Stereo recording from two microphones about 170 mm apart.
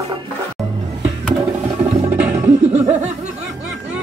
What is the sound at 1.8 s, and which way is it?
Music, 5° right (ahead or behind).